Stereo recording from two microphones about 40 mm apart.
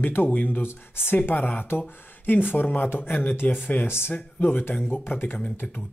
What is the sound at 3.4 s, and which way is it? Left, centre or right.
Speech, left.